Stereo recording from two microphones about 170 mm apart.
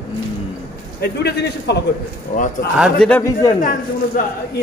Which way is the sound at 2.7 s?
Centre (ahead or behind).